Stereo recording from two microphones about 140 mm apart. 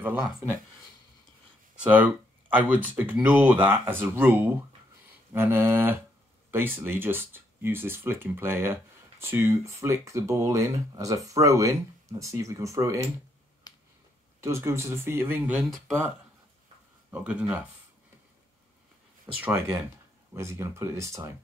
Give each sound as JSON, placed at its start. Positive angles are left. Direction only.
{"t": 0.0, "sound": "speech", "side_deg": -10}
{"t": 1.8, "sound": "speech", "side_deg": -10}
{"t": 13.7, "sound": "finger snapping", "side_deg": 25}
{"t": 14.4, "sound": "speech", "side_deg": -20}
{"t": 17.1, "sound": "speech", "side_deg": -10}
{"t": 19.3, "sound": "speech", "side_deg": -15}